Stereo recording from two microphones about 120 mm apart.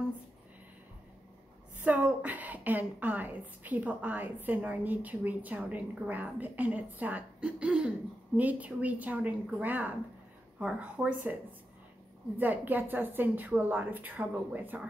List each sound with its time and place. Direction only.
1.8 s a woman's voice: 10° right (ahead or behind)
12.4 s a woman's voice: 15° right (ahead or behind)